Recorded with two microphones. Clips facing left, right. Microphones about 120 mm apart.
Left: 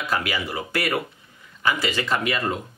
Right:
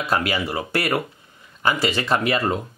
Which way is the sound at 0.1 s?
30° right (ahead or behind).